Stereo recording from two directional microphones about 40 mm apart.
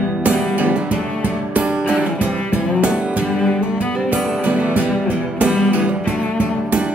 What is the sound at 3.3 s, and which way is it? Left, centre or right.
Music, left.